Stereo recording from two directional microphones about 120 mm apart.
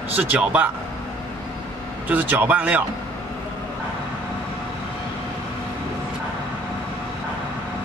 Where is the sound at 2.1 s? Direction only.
15° right (ahead or behind).